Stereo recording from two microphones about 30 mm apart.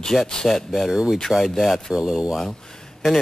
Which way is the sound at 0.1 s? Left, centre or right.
Centre.